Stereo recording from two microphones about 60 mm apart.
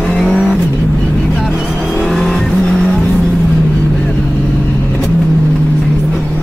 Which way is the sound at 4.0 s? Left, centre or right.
Centre.